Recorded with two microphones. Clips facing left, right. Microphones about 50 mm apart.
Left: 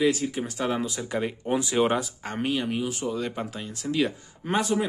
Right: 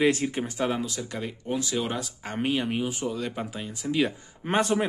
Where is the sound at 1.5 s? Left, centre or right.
Left.